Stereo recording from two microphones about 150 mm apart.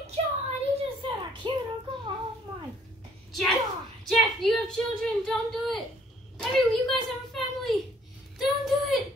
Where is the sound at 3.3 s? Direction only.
Centre (ahead or behind).